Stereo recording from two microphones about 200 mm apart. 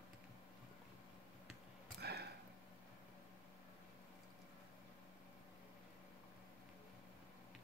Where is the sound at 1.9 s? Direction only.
55° right (ahead or behind).